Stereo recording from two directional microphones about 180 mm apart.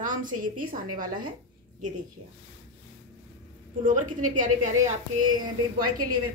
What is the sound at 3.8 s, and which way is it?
Speech, 45° right (ahead or behind).